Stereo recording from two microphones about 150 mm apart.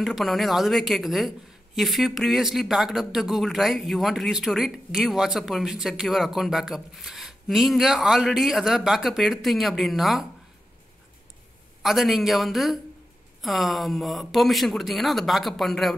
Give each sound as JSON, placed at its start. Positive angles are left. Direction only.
{"t": 0.0, "sound": "speech", "side_deg": 0}
{"t": 11.8, "sound": "speech", "side_deg": 0}